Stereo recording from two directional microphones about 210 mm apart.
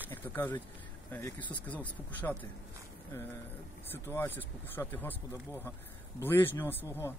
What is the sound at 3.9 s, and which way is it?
Speech, 10° left (ahead or behind).